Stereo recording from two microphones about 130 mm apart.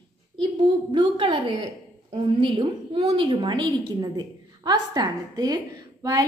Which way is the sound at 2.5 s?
40° right (ahead or behind).